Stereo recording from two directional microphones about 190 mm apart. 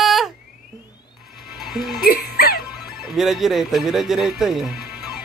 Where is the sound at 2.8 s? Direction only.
Centre (ahead or behind).